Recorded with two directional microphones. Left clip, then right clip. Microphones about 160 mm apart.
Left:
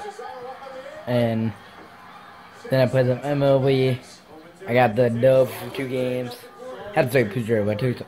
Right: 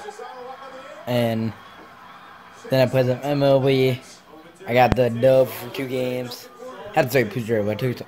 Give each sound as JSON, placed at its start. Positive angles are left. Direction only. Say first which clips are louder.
{"t": 1.0, "sound": "speech", "louder": "even", "side_deg": -15}
{"t": 2.7, "sound": "speech", "louder": "right 1 dB", "side_deg": -15}